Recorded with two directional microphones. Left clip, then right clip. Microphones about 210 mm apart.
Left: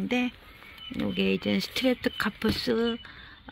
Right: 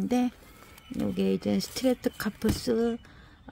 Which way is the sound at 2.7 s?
5° right (ahead or behind).